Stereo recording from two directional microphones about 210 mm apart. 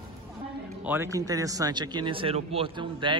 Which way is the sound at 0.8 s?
10° right (ahead or behind).